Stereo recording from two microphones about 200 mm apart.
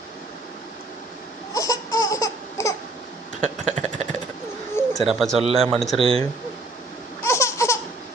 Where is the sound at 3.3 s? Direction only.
35° right (ahead or behind).